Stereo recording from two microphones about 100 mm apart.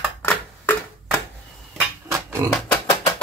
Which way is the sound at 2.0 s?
30° right (ahead or behind).